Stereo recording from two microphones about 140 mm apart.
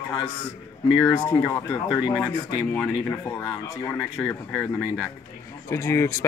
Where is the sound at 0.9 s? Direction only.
25° left (ahead or behind).